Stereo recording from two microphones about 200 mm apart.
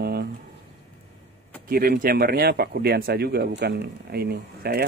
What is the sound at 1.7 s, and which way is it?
Speech, 45° right (ahead or behind).